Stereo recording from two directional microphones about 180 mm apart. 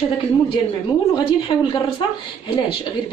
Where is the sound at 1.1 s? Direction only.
25° left (ahead or behind).